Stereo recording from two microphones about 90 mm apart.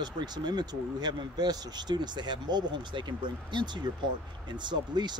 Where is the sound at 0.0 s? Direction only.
55° right (ahead or behind).